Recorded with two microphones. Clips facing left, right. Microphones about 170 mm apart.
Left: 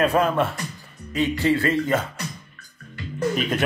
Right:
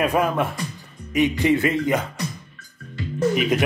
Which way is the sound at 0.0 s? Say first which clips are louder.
Left 1 dB; 15° right (ahead or behind).